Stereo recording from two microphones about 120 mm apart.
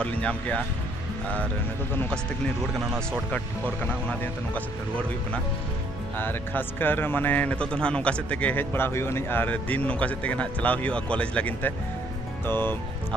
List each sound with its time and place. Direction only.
0.0 s speech: 10° left (ahead or behind)
3.8 s speech: 15° left (ahead or behind)